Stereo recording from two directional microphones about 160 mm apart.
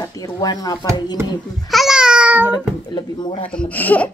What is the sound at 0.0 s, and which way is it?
Speech, 20° left (ahead or behind).